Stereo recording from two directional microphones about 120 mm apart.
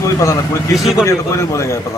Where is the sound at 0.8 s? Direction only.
Centre (ahead or behind).